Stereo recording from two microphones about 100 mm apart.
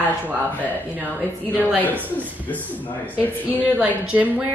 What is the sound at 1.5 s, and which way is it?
Speech, 15° left (ahead or behind).